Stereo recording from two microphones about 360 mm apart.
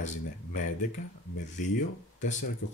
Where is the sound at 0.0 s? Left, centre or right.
Left.